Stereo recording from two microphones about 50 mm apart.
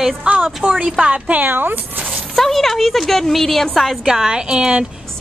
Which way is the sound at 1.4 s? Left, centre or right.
Right.